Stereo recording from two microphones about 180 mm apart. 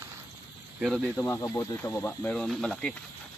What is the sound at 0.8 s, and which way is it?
Speech, 5° right (ahead or behind).